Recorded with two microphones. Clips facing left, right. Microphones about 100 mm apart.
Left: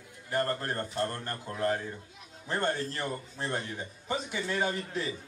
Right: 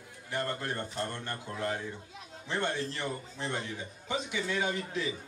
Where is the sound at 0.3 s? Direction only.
45° left (ahead or behind).